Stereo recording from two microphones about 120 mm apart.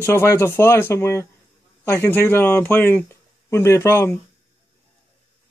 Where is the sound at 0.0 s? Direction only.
20° left (ahead or behind).